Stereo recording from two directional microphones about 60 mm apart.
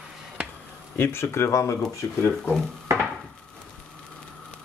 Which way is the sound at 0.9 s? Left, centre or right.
Left.